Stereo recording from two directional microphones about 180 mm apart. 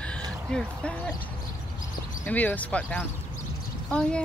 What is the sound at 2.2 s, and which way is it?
Speech, 10° left (ahead or behind).